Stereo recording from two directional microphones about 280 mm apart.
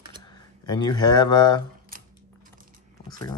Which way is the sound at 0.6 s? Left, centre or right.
Centre.